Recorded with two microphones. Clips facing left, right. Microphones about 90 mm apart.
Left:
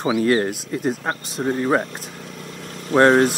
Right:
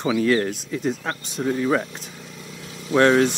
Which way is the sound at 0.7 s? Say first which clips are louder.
Left 2 dB; 55° left (ahead or behind).